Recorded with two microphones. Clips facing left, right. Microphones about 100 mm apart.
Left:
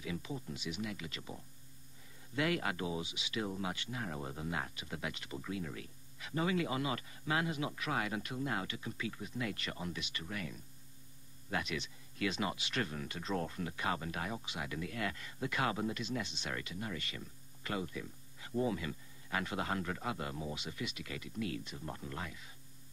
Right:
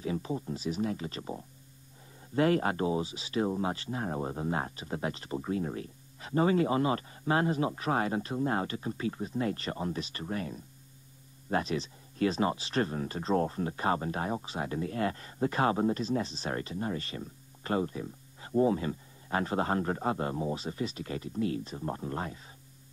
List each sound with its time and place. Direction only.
0.0 s speech: 35° right (ahead or behind)